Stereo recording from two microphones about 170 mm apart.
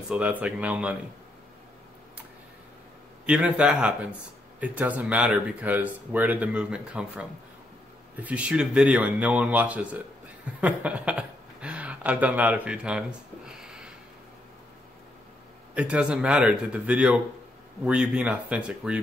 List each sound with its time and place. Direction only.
0.1 s speech: 10° right (ahead or behind)
3.3 s speech: 5° right (ahead or behind)
13.5 s a sound: 5° right (ahead or behind)
15.7 s speech: 5° right (ahead or behind)